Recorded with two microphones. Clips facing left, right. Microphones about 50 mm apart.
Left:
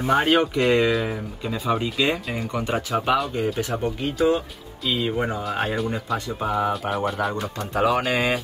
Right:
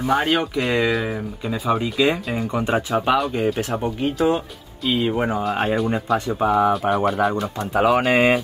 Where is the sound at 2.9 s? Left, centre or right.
Centre.